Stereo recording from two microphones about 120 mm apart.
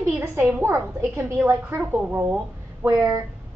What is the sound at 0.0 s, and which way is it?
A woman's voice, 20° right (ahead or behind).